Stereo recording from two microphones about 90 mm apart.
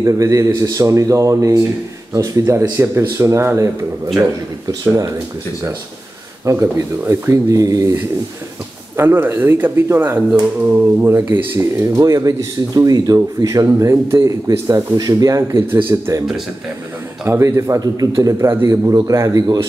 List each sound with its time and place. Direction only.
0.0 s speech: 40° right (ahead or behind)
6.4 s speech: 35° right (ahead or behind)
8.9 s speech: 25° right (ahead or behind)
12.0 s a man's voice: 40° right (ahead or behind)
15.6 s speech: 25° right (ahead or behind)
17.3 s speech: 35° right (ahead or behind)